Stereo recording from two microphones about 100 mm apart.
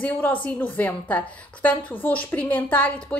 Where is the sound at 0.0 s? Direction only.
15° left (ahead or behind).